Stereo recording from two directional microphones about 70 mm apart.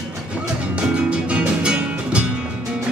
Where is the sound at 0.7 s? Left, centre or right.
Centre.